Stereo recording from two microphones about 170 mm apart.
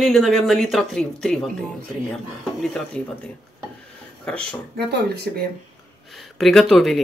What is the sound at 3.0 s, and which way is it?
Speech, 5° left (ahead or behind).